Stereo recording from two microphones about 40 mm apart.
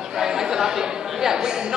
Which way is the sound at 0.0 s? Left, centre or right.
Centre.